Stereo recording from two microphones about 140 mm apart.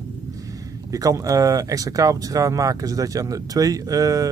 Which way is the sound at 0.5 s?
25° right (ahead or behind).